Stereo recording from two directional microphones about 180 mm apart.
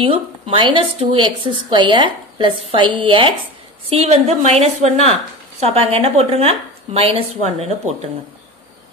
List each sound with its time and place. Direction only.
0.0 s a woman's voice: 30° right (ahead or behind)